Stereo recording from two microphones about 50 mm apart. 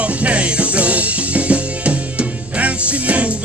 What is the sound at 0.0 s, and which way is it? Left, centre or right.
Music, right.